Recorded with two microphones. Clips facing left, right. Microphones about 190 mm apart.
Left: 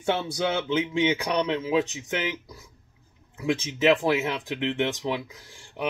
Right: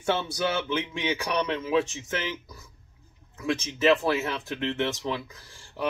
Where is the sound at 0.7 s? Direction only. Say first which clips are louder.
Left 5 dB; 20° left (ahead or behind).